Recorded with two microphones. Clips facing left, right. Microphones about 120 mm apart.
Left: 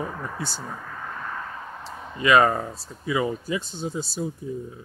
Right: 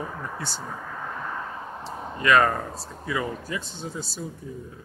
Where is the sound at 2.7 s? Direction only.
55° right (ahead or behind).